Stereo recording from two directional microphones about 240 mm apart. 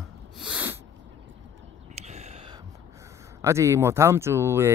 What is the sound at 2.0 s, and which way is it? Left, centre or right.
Whispering, right.